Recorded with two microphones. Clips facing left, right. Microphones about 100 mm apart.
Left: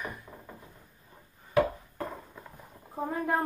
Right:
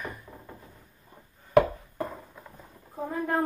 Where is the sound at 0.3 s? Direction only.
20° left (ahead or behind).